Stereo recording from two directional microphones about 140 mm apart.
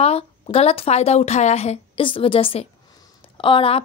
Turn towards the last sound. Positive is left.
turn(degrees=40)  # may be behind; listen again after turning